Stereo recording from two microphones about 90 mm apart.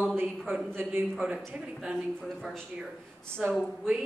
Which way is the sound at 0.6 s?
25° right (ahead or behind).